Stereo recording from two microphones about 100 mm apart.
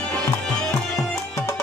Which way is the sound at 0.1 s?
10° left (ahead or behind).